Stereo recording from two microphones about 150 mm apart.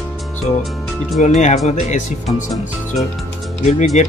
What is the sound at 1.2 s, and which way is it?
Speech, 50° left (ahead or behind).